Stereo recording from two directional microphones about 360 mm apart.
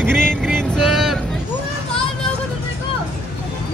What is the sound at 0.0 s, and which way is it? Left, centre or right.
Vehicle, centre.